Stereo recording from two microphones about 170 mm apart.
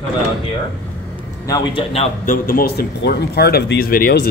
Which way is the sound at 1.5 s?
35° left (ahead or behind).